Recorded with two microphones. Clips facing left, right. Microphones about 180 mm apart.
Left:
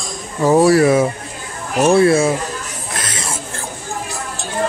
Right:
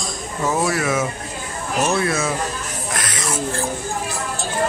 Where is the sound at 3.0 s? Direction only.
25° left (ahead or behind).